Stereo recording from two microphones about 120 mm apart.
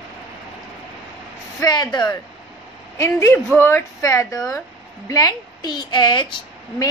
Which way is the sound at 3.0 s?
20° left (ahead or behind).